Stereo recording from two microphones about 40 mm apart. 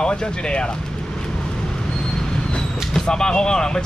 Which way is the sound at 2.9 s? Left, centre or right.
Centre.